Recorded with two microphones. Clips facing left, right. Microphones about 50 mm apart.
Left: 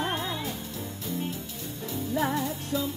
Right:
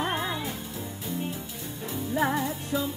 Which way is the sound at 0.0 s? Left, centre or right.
Centre.